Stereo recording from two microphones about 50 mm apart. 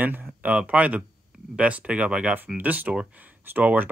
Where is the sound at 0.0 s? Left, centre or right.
Right.